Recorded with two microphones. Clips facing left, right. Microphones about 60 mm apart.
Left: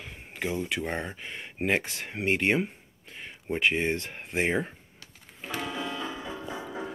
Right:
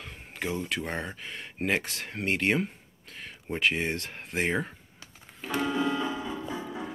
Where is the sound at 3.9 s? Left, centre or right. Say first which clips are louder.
Left 3 dB; centre.